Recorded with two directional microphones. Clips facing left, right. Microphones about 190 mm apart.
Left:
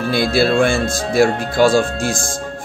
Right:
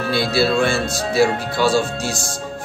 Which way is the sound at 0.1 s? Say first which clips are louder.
Left 3 dB; 50° left (ahead or behind).